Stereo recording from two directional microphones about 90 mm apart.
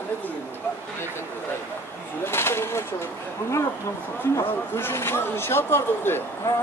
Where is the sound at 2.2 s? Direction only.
30° left (ahead or behind).